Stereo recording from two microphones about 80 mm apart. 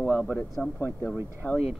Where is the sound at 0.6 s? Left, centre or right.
Left.